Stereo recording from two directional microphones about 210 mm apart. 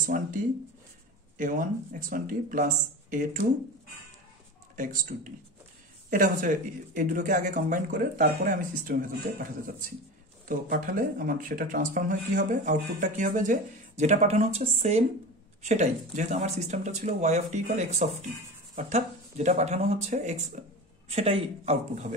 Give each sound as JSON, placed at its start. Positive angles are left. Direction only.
{"t": 0.1, "sound": "speech", "side_deg": -40}
{"t": 1.4, "sound": "speech", "side_deg": -40}
{"t": 4.7, "sound": "speech", "side_deg": -40}